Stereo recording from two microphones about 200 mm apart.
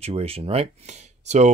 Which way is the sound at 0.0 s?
30° right (ahead or behind).